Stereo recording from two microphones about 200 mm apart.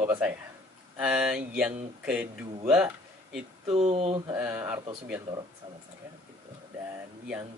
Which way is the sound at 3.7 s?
30° right (ahead or behind).